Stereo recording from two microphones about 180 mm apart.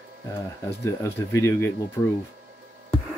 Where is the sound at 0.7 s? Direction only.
15° left (ahead or behind).